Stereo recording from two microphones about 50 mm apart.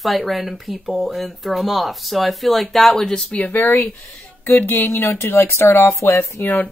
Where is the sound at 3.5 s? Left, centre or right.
Left.